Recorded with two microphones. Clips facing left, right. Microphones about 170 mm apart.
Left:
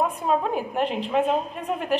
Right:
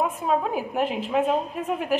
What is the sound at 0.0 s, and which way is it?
A woman's voice, 5° right (ahead or behind).